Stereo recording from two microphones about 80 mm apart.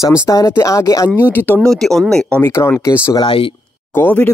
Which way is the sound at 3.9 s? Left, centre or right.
Left.